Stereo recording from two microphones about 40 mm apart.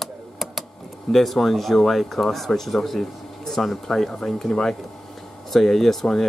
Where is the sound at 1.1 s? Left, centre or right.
Centre.